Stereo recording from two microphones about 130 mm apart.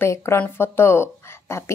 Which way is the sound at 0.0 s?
20° left (ahead or behind).